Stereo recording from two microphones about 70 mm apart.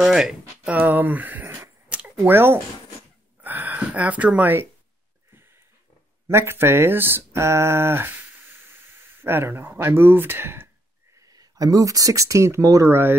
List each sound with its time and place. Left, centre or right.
0.0 s speech: centre
0.7 s speech: right
5.3 s a sound: right
6.2 s speech: right
11.1 s speech: right